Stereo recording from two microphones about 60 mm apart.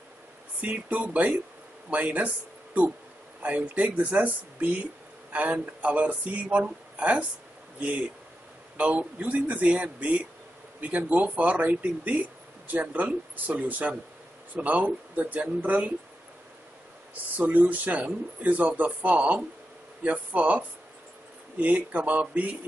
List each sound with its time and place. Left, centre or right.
0.6 s speech: right
8.7 s speech: right
17.4 s speech: right